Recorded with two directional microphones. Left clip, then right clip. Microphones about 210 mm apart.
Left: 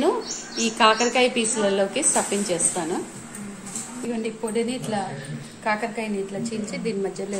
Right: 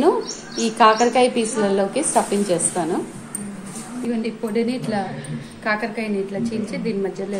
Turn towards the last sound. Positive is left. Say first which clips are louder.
# right 3 dB
turn(degrees=5)  # may be behind; listen again after turning